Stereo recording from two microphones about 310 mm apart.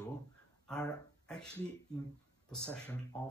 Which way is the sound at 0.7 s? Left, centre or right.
Centre.